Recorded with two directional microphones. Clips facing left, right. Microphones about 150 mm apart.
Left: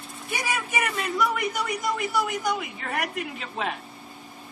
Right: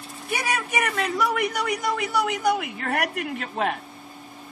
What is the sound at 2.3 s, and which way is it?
Speech, 60° right (ahead or behind).